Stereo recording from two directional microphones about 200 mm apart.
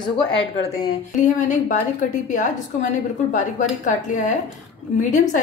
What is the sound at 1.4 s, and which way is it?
A woman's voice, 40° left (ahead or behind).